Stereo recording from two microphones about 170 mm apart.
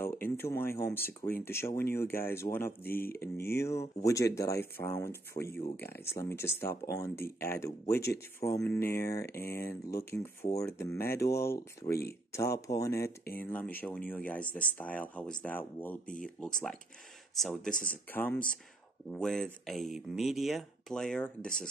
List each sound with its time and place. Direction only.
0.0 s speech: 15° left (ahead or behind)